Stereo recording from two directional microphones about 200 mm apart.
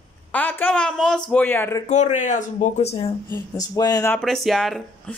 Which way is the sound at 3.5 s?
20° left (ahead or behind).